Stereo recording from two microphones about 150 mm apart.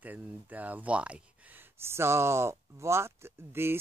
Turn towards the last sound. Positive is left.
turn(degrees=-15)  # may be behind; listen again after turning